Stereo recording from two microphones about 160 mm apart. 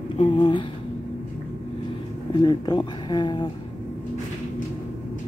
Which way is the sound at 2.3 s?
25° left (ahead or behind).